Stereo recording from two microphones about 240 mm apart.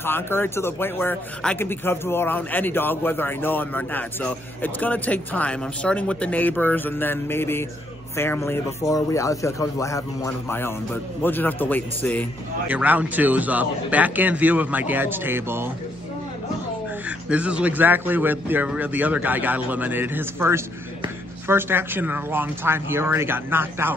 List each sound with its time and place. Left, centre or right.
0.0 s speech: centre
12.6 s speech: centre
17.3 s speech: centre